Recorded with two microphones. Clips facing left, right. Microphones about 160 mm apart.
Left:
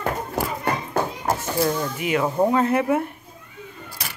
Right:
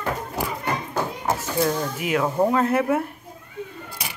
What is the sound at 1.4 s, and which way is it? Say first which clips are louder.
Speech: even; 5° left (ahead or behind).